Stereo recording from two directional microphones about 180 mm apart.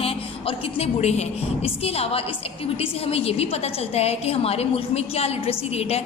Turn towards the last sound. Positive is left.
turn(degrees=35)  # may be behind; listen again after turning